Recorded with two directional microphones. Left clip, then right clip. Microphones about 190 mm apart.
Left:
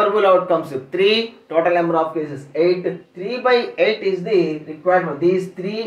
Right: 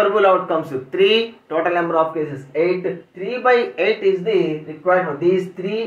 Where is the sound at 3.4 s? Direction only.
10° left (ahead or behind).